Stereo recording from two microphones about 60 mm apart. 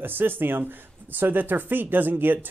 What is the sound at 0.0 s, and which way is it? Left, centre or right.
Speech, right.